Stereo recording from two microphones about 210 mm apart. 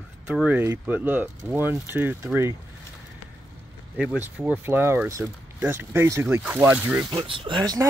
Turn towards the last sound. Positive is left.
turn(degrees=-20)  # may be behind; listen again after turning